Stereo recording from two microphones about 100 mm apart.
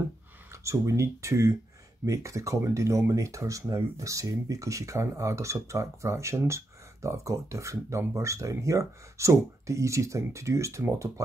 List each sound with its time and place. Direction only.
0.5 s speech: 30° right (ahead or behind)